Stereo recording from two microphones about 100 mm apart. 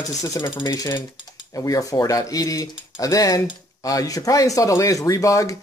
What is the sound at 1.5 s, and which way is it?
Speech, 35° left (ahead or behind).